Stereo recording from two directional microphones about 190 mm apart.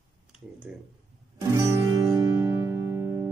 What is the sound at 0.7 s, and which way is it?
Speech, 5° right (ahead or behind).